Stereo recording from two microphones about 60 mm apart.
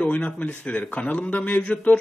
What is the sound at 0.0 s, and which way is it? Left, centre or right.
A man's voice, left.